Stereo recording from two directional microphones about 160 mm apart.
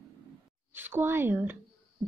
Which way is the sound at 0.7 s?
15° right (ahead or behind).